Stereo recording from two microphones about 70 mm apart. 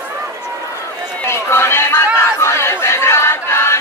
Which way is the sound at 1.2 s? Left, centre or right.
Left.